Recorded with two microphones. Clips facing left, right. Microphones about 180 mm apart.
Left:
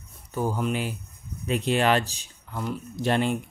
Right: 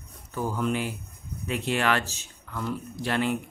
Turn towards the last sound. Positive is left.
turn(degrees=25)  # may be behind; listen again after turning